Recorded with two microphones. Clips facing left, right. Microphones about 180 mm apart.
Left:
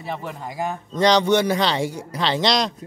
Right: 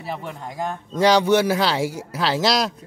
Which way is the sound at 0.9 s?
5° right (ahead or behind).